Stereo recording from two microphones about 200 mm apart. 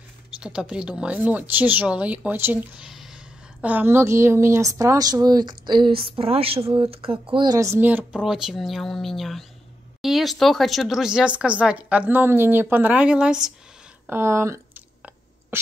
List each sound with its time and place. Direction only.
0.3 s a woman's voice: 5° right (ahead or behind)
14.0 s whispering: 10° right (ahead or behind)